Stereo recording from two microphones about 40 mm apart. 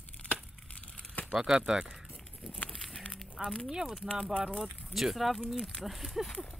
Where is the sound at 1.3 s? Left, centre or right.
Centre.